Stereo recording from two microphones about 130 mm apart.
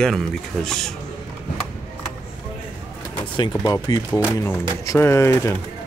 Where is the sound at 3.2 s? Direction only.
40° left (ahead or behind).